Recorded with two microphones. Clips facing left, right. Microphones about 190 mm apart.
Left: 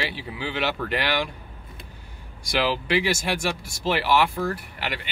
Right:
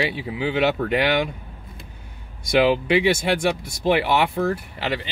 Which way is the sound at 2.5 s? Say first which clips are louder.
Right 6 dB; 20° right (ahead or behind).